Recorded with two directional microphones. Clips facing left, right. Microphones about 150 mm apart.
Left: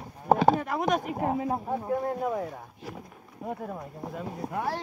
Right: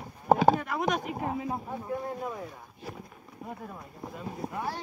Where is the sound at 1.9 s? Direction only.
60° left (ahead or behind).